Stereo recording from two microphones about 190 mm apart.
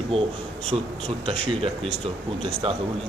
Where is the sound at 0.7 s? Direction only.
30° right (ahead or behind).